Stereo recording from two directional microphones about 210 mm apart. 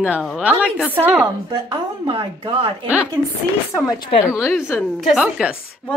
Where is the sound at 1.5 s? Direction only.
25° right (ahead or behind).